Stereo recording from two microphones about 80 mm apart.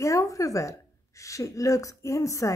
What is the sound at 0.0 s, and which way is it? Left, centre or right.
A woman's voice, left.